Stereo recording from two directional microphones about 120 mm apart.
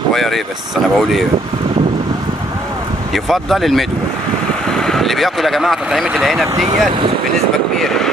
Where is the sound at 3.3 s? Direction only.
Centre (ahead or behind).